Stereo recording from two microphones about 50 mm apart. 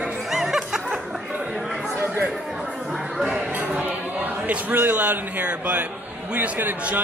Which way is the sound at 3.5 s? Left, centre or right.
Right.